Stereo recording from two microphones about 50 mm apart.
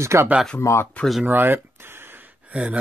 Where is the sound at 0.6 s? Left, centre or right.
Left.